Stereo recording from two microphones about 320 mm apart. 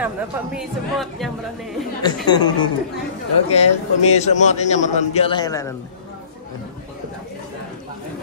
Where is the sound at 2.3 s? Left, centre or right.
Centre.